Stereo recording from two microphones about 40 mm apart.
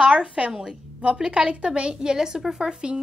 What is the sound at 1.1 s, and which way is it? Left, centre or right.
A woman's voice, right.